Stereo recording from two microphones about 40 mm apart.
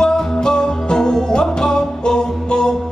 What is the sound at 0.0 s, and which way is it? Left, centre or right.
Music, centre.